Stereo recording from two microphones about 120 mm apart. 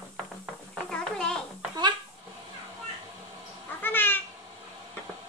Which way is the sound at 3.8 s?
15° left (ahead or behind).